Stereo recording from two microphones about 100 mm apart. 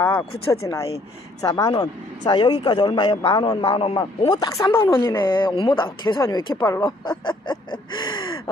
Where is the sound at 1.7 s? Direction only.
50° left (ahead or behind).